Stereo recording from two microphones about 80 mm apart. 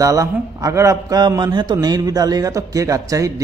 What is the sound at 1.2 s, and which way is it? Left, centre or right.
A man's voice, right.